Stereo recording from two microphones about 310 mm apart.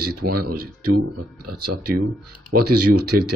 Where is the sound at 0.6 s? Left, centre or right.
Right.